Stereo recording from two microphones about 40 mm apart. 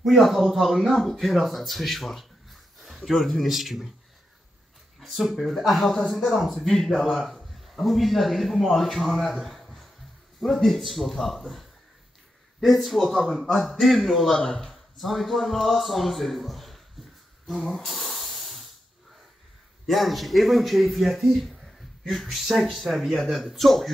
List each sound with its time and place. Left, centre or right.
0.0 s a man's voice: centre
5.0 s a man's voice: centre
6.5 s a man's voice: centre
12.6 s a man's voice: centre
14.3 s speech: left
14.6 s speech: centre
17.6 s hiss: centre
19.9 s a man's voice: centre